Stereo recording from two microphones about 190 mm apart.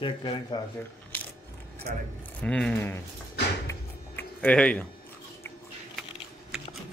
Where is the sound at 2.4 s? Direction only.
5° left (ahead or behind).